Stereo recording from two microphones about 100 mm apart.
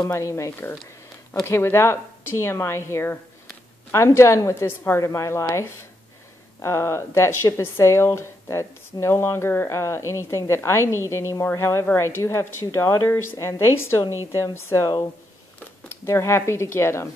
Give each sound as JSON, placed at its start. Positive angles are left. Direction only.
{"t": 0.0, "sound": "a woman's voice", "side_deg": 30}
{"t": 16.1, "sound": "a woman's voice", "side_deg": 25}